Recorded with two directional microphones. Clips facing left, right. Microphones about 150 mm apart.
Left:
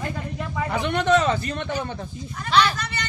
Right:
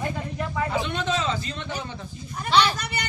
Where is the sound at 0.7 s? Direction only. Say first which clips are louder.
Left 6 dB; 60° left (ahead or behind).